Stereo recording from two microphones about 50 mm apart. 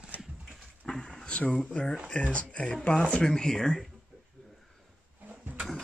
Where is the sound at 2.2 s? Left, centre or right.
Left; by 3.8 s centre.